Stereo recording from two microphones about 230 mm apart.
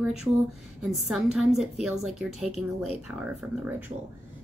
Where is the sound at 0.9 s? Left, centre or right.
Centre.